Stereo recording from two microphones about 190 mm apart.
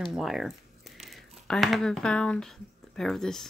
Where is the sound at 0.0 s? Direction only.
Centre (ahead or behind).